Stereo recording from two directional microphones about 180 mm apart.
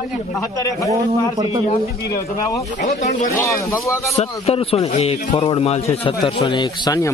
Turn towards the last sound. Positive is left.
turn(degrees=20)  # may be behind; listen again after turning